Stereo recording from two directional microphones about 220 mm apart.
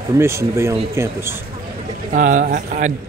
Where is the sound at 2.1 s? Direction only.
35° right (ahead or behind).